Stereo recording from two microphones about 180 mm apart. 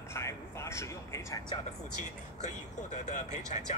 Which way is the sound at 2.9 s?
40° left (ahead or behind).